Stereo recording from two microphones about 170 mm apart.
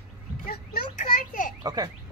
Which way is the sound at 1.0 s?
50° left (ahead or behind).